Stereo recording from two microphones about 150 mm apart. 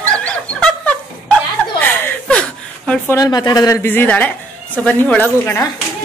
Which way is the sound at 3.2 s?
25° left (ahead or behind).